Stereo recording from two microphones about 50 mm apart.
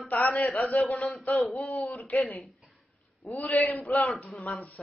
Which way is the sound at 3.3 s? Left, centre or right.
Left.